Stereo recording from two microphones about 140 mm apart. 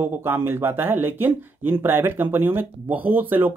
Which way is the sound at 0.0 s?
15° right (ahead or behind).